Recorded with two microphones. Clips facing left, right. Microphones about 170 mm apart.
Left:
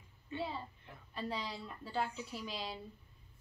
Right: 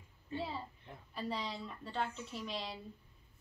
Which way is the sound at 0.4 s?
Centre (ahead or behind).